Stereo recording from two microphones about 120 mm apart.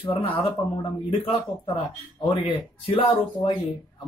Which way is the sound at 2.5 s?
50° left (ahead or behind).